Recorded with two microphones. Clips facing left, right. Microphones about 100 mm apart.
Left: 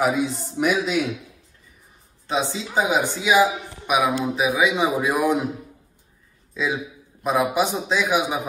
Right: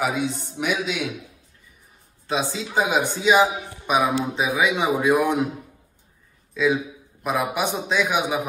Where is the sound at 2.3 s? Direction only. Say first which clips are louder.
Left 1 dB; 15° left (ahead or behind).